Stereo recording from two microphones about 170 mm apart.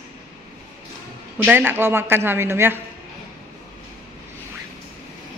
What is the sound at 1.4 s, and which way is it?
A woman's voice, 10° right (ahead or behind).